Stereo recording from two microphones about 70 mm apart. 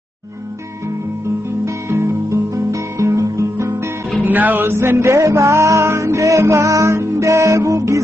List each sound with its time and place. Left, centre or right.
1.7 s guitar: right
4.2 s music: right